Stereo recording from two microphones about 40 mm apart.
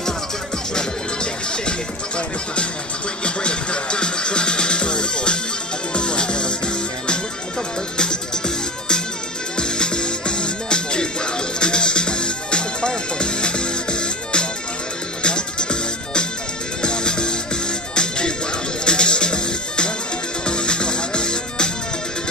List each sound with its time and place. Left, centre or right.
0.7 s music: left
9.6 s music: left